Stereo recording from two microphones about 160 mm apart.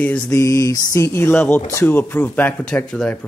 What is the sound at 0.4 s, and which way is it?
Speech, 20° left (ahead or behind).